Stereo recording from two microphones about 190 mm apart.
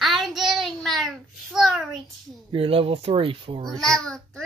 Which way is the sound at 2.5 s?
30° right (ahead or behind).